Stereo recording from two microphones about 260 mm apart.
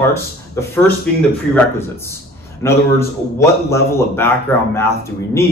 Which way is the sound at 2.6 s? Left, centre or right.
Centre.